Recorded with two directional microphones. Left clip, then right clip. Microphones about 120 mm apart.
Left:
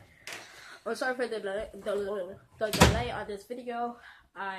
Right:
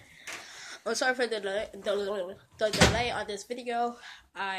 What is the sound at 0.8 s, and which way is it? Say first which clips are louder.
Speech: right 3 dB; 25° right (ahead or behind).